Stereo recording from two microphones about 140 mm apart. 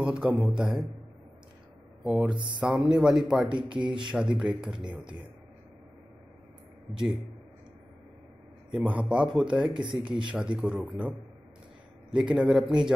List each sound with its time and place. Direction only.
0.0 s a man's voice: 10° right (ahead or behind)
2.0 s speech: 5° right (ahead or behind)
2.3 s speech: 35° right (ahead or behind)
2.6 s speech: 5° right (ahead or behind)
3.4 s speech: 35° right (ahead or behind)
4.1 s speech: 5° right (ahead or behind)
8.7 s a man's voice: 10° right (ahead or behind)
12.1 s a man's voice: 5° right (ahead or behind)